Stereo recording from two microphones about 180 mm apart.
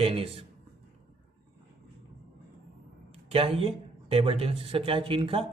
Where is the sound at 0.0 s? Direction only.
35° right (ahead or behind).